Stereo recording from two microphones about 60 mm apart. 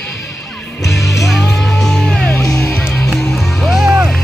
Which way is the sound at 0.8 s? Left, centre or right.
Left.